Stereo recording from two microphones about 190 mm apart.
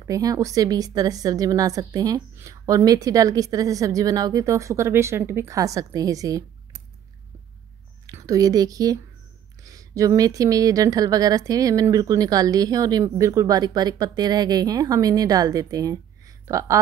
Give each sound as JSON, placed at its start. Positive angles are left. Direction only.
{"t": 0.0, "sound": "a woman's voice", "side_deg": -20}
{"t": 8.1, "sound": "a woman's voice", "side_deg": -15}